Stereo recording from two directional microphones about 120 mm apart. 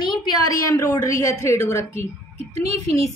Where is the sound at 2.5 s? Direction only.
65° right (ahead or behind).